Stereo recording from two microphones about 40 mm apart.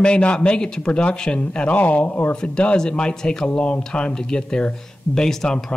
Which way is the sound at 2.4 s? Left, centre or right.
Left.